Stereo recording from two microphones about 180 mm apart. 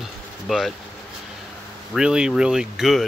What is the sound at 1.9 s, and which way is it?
Speech, 5° right (ahead or behind).